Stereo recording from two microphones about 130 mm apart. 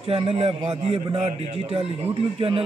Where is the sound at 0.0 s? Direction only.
45° right (ahead or behind).